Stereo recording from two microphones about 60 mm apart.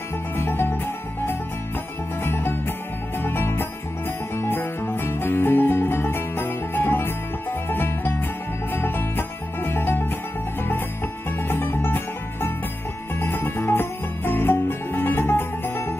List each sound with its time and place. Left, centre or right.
0.4 s music: left
2.2 s music: left
11.4 s music: left